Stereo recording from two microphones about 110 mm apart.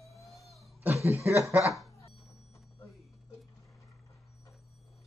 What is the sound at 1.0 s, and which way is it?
Chuckle, 25° right (ahead or behind).